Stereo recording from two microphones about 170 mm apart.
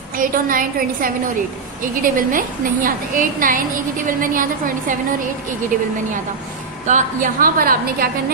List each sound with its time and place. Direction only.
0.2 s a woman's voice: 55° right (ahead or behind)
6.9 s a woman's voice: 55° right (ahead or behind)